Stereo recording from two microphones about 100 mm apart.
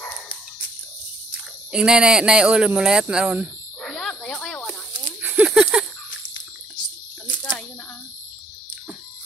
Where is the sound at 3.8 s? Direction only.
10° left (ahead or behind).